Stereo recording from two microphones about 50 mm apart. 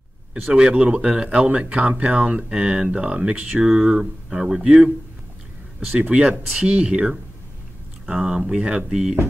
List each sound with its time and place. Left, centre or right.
0.5 s speech: right
5.9 s speech: right